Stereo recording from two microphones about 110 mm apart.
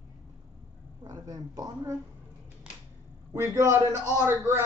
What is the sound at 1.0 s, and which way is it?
Speech, 35° right (ahead or behind).